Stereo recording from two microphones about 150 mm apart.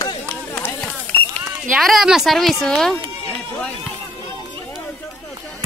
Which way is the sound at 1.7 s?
Centre (ahead or behind).